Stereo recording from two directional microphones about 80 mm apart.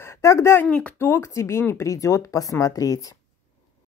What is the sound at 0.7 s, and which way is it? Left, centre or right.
Speech, centre.